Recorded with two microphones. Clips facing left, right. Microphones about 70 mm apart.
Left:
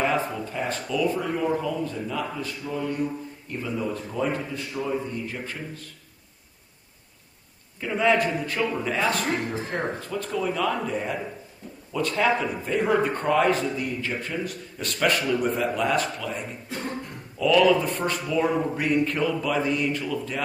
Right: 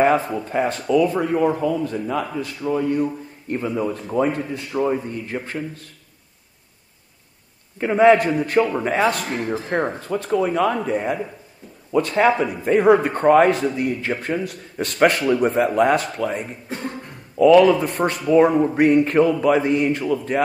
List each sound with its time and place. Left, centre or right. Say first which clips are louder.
0.0 s speech: right 7 dB; right
7.8 s speech: right 8 dB; right